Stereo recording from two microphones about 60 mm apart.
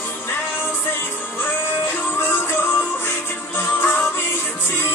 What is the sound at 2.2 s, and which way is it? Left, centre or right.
Music, left.